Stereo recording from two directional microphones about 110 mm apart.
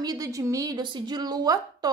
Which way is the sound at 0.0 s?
35° right (ahead or behind).